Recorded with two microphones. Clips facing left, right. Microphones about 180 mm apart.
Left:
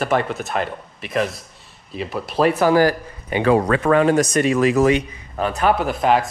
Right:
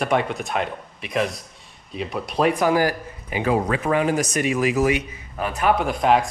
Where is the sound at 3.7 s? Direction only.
70° left (ahead or behind).